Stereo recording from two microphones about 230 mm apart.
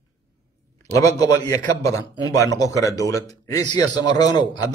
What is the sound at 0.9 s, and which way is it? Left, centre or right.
A man's voice, centre.